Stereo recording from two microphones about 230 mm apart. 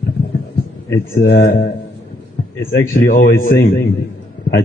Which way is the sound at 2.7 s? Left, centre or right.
Left.